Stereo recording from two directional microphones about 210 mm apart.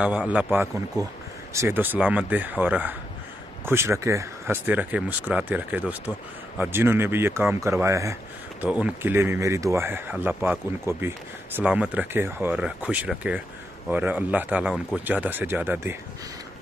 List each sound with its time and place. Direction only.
0.0 s speech: 5° right (ahead or behind)